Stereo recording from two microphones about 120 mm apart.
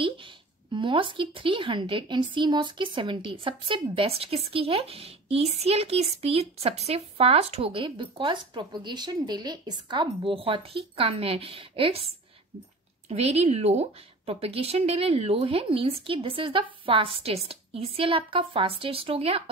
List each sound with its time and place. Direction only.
0.7 s a woman's voice: 45° right (ahead or behind)
13.1 s a woman's voice: 60° right (ahead or behind)